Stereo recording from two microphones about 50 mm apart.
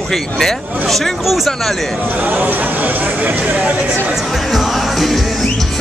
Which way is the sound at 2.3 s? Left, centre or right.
Right.